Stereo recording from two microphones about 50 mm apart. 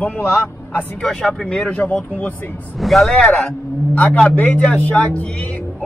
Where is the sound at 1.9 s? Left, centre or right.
Left.